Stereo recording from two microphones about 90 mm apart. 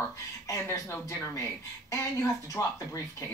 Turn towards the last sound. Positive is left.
turn(degrees=40)  # may be behind; listen again after turning